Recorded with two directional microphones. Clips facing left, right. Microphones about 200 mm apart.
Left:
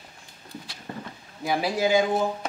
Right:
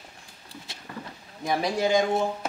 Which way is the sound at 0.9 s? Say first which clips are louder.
Left 3 dB; 30° left (ahead or behind).